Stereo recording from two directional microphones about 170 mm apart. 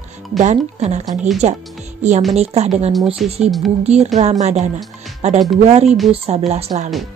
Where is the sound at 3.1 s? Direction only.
Centre (ahead or behind).